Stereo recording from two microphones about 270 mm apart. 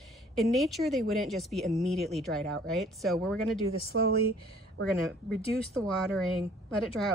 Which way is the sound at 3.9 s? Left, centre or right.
Right.